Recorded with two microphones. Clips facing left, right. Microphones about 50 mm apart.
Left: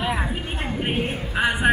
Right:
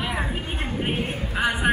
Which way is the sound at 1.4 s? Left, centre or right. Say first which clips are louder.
Left 2 dB; centre.